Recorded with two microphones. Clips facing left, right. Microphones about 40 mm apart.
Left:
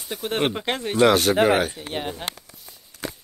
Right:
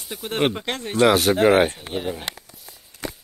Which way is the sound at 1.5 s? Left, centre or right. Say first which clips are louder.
Right 4 dB; right.